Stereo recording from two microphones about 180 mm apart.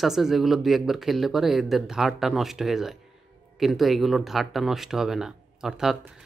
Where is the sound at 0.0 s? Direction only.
Centre (ahead or behind).